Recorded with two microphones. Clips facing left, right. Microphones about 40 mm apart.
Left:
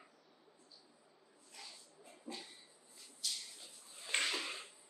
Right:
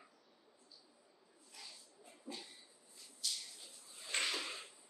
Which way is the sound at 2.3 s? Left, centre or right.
Centre.